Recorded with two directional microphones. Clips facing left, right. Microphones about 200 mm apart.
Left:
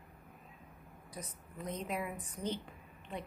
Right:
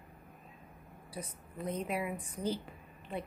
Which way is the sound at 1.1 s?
10° right (ahead or behind).